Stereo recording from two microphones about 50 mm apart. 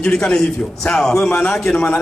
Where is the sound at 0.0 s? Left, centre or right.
Centre.